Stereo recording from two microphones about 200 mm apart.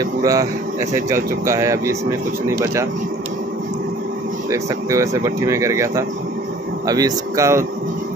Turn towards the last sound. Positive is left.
turn(degrees=-15)  # may be behind; listen again after turning